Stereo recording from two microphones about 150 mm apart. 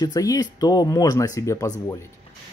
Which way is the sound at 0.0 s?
25° left (ahead or behind).